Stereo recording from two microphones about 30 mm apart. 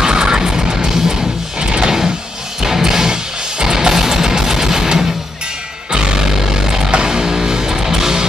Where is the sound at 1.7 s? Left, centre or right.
Right.